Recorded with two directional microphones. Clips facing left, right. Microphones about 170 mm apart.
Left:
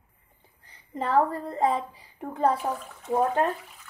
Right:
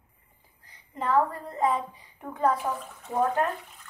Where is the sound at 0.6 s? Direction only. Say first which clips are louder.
Even; 30° left (ahead or behind).